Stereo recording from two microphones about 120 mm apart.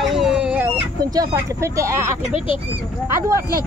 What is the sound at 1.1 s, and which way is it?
Speech, 30° right (ahead or behind).